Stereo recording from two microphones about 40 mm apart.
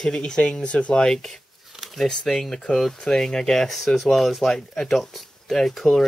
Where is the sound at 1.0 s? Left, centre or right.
Centre.